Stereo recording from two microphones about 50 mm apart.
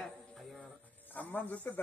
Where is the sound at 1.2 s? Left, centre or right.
Left.